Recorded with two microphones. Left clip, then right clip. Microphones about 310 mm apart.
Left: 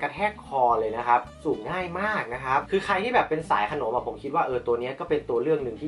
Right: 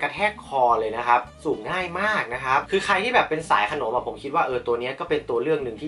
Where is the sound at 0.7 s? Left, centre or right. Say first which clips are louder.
Right 2 dB; centre.